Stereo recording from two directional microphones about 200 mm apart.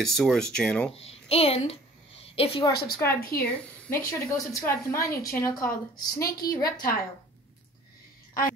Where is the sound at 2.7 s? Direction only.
50° left (ahead or behind).